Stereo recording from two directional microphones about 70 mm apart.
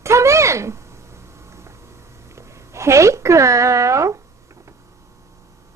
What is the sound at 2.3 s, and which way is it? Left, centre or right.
Speech, right.